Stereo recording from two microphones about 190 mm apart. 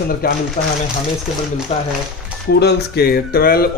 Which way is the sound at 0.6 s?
35° left (ahead or behind).